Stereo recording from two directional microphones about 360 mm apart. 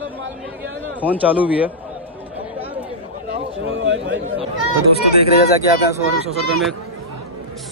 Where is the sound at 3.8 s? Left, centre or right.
Right.